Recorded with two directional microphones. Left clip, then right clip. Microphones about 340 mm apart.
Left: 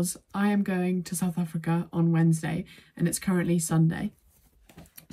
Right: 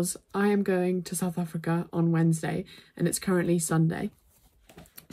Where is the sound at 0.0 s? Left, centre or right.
Centre.